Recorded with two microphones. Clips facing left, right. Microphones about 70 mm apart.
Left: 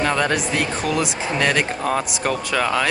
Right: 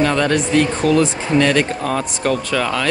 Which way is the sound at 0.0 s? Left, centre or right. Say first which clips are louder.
Right 4 dB; centre.